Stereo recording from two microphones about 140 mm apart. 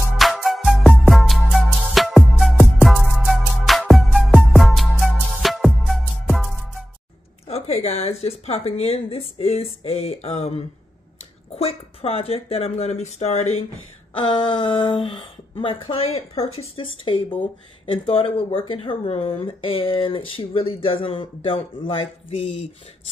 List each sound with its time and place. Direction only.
0.2 s music: centre (ahead or behind)
7.4 s a sound: 50° left (ahead or behind)
8.2 s speech: 45° left (ahead or behind)
14.1 s speech: 35° left (ahead or behind); by 22.7 s 50° left (ahead or behind)